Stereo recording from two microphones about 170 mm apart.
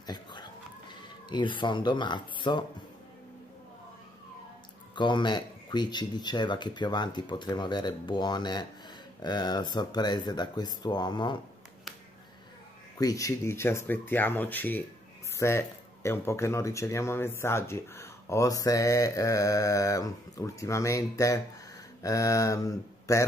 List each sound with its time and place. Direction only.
0.0 s a sound: 25° left (ahead or behind)
4.9 s speech: 25° left (ahead or behind)
12.9 s speech: 20° left (ahead or behind)